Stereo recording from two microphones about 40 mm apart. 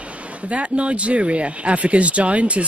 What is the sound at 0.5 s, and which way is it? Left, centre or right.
Speech, right.